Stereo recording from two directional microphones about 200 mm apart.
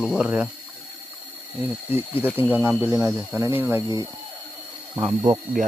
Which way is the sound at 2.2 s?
10° right (ahead or behind).